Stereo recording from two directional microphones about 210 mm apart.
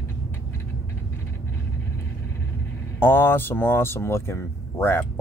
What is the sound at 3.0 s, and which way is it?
Speech, 10° left (ahead or behind).